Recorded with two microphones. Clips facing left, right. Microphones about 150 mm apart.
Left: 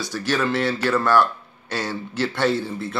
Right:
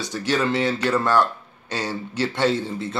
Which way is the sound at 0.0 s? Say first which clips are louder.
Even; 20° right (ahead or behind).